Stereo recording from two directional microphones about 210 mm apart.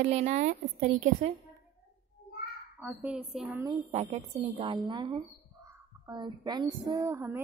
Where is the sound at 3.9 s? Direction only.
30° right (ahead or behind); by 7.4 s 15° right (ahead or behind).